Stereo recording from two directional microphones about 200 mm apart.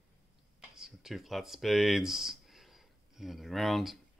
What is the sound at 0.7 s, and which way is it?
Speech, centre (ahead or behind).